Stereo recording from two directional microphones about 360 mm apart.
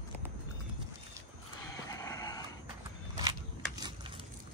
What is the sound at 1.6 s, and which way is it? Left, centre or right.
Vehicle, centre.